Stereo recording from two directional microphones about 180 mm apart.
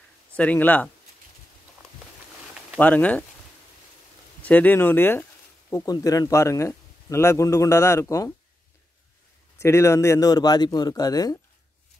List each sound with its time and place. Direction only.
0.4 s a man's voice: 10° left (ahead or behind)
2.8 s a man's voice: 10° left (ahead or behind)
4.4 s a man's voice: 10° left (ahead or behind)
9.6 s speech: 15° left (ahead or behind)